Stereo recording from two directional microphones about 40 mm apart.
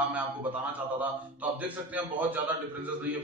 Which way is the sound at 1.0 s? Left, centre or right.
Right.